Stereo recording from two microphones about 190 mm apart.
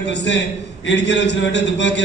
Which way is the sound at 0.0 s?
70° left (ahead or behind).